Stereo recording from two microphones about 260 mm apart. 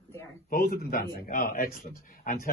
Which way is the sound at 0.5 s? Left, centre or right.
Left.